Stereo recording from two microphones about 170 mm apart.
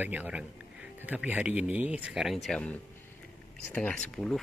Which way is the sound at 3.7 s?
5° left (ahead or behind).